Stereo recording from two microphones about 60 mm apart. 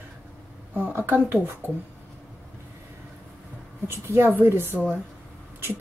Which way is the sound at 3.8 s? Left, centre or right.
Right.